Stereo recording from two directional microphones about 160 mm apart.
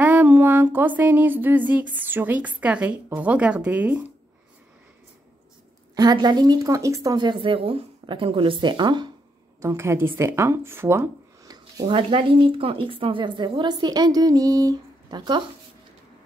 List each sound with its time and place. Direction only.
0.0 s a sound: 10° right (ahead or behind)
5.9 s speech: 25° right (ahead or behind)
9.6 s speech: 20° right (ahead or behind)